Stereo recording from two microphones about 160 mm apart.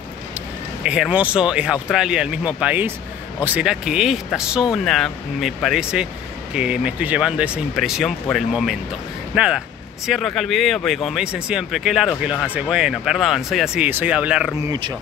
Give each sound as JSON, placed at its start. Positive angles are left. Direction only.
{"t": 0.8, "sound": "speech", "side_deg": -5}
{"t": 14.6, "sound": "speech", "side_deg": -25}